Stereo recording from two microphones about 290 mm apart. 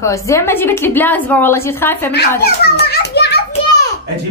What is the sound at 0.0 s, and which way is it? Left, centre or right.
A woman's voice, centre.